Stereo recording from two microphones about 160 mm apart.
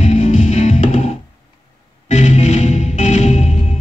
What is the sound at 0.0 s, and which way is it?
Music, 50° left (ahead or behind).